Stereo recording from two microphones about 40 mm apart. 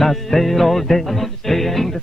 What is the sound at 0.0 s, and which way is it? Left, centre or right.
Music, centre.